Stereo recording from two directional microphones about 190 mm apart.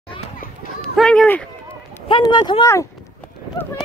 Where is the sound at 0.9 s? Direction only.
5° left (ahead or behind).